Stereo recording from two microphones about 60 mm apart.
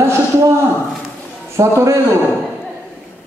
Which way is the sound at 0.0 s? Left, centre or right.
Right.